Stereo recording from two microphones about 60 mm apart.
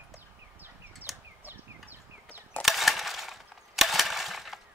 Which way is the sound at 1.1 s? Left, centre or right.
Centre.